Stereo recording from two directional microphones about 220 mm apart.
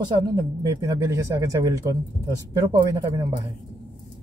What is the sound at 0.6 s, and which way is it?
Speech, 15° right (ahead or behind).